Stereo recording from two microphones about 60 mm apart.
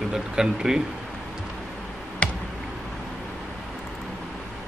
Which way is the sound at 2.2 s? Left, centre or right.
Left.